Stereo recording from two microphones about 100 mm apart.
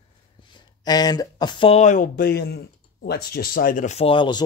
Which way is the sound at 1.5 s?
70° left (ahead or behind).